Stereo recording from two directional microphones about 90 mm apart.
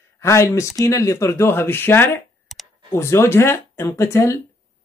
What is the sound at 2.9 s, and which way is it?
Speech, 30° left (ahead or behind).